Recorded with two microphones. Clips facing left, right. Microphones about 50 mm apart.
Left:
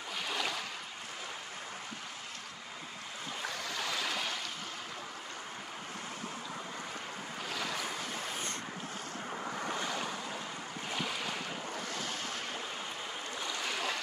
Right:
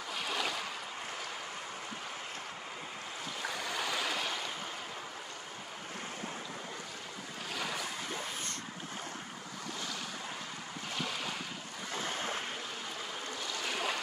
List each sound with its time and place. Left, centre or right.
0.2 s boat: centre
3.4 s stream: centre
9.6 s waves: left
10.9 s waves: centre
11.9 s waves: right
13.7 s a sound: centre